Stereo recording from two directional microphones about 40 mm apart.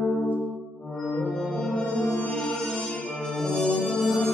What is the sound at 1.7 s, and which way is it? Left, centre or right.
Music, left.